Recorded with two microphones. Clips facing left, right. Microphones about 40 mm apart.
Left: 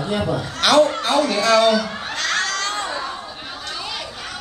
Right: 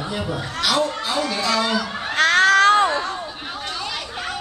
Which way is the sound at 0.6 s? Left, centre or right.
Left.